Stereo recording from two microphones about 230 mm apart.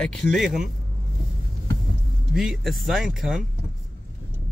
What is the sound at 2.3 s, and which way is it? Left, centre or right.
Speech, centre.